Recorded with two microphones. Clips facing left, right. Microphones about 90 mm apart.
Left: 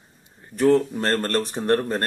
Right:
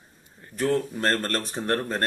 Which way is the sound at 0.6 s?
15° left (ahead or behind).